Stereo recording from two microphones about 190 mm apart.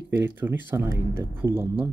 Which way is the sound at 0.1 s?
10° right (ahead or behind).